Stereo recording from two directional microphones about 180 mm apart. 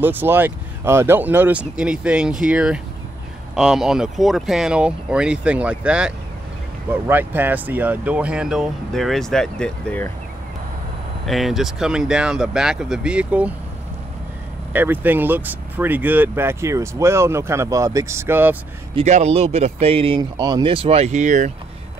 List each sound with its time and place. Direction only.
0.0 s speech: 10° right (ahead or behind); by 10.1 s 10° left (ahead or behind)
11.2 s speech: centre (ahead or behind)
14.7 s speech: 10° right (ahead or behind)
18.9 s speech: 40° right (ahead or behind)